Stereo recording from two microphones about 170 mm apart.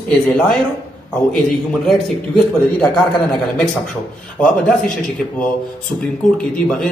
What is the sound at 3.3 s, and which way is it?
Speech, centre (ahead or behind).